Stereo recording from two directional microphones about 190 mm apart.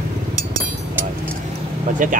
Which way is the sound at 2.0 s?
45° right (ahead or behind).